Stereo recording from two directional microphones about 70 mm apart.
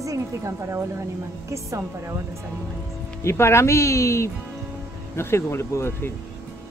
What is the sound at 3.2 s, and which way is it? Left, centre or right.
Speech, left.